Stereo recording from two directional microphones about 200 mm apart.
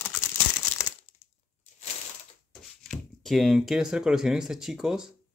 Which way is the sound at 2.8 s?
Centre (ahead or behind).